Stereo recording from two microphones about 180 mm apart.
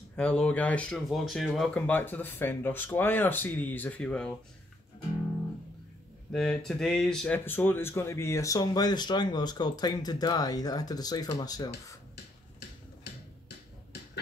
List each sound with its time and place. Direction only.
0.1 s speech: 5° left (ahead or behind)
6.3 s speech: centre (ahead or behind); by 12.0 s 20° left (ahead or behind)